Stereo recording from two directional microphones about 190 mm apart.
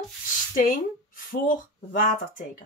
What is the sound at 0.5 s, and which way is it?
Speech, 45° left (ahead or behind).